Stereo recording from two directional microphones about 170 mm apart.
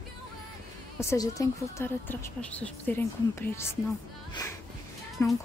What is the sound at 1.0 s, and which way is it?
Speech, 20° left (ahead or behind).